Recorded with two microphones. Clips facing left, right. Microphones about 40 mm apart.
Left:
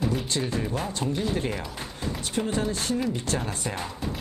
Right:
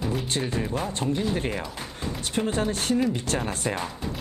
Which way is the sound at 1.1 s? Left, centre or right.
Right.